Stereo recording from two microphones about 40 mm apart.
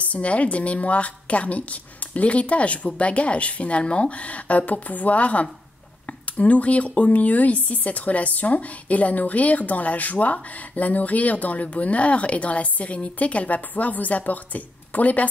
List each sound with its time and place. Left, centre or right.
0.0 s speech: left